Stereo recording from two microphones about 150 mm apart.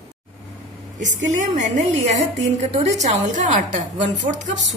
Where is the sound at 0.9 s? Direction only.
55° right (ahead or behind).